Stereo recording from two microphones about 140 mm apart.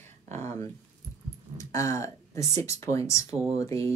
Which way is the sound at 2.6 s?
20° left (ahead or behind).